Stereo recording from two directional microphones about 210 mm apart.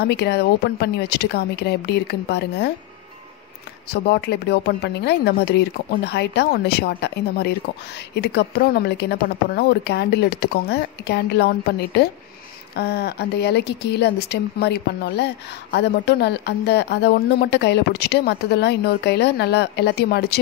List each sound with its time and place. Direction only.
0.0 s speech: 50° left (ahead or behind)
3.9 s speech: 50° left (ahead or behind)